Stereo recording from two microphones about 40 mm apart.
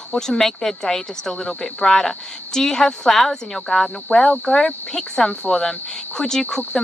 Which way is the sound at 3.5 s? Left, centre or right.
Left.